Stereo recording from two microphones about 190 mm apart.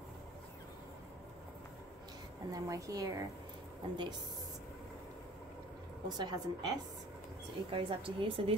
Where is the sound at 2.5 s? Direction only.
15° right (ahead or behind).